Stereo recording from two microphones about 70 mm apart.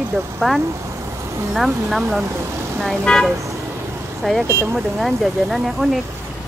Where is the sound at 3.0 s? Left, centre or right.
Centre.